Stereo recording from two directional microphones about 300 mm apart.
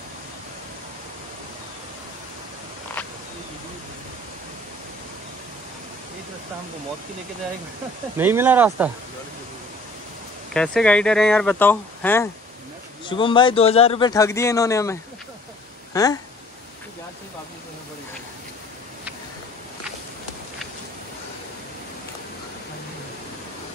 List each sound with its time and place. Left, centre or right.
8.2 s speech: centre
10.5 s speech: centre